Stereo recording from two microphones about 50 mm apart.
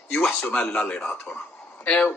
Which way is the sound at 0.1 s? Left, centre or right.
Left.